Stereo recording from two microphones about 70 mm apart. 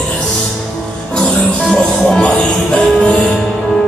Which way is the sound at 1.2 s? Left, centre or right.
Centre.